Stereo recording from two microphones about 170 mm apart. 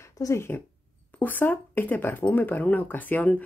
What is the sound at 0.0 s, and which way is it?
Speech, 20° left (ahead or behind).